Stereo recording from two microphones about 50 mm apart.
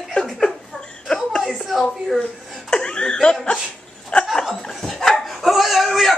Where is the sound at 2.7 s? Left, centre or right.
Centre.